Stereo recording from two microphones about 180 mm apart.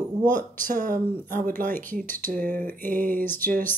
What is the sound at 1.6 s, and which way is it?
Speech, 10° left (ahead or behind).